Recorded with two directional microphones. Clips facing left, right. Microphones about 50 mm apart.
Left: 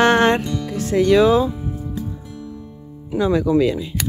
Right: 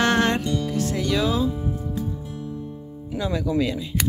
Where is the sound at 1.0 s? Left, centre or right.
Left.